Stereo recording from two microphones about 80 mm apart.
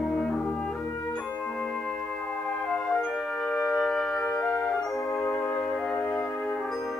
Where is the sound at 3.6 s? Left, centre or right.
Left.